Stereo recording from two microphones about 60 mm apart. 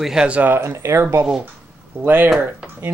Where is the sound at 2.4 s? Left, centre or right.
Right.